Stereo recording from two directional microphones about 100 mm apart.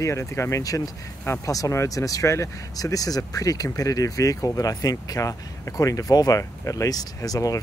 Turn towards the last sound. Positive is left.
turn(degrees=35)  # may be behind; listen again after turning